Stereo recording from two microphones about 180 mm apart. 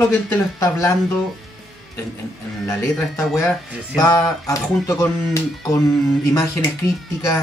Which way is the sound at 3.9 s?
20° left (ahead or behind).